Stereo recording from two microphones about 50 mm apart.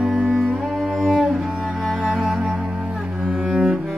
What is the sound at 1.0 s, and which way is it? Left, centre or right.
Cello, centre.